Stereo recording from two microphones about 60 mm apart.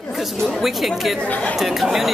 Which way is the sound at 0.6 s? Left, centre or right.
Centre.